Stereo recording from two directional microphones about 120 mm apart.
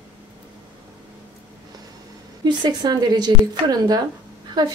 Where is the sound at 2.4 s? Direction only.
35° right (ahead or behind).